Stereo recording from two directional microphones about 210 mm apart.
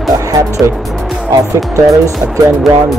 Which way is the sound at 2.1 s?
Centre (ahead or behind).